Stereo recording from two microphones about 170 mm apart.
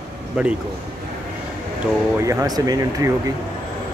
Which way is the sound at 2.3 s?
20° right (ahead or behind).